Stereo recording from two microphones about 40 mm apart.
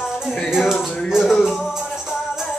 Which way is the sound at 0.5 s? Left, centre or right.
Centre.